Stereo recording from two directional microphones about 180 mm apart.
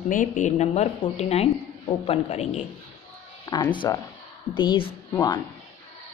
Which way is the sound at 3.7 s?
25° left (ahead or behind).